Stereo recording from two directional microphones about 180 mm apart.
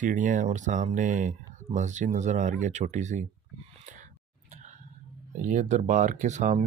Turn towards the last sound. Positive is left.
turn(degrees=-40)  # may be behind; listen again after turning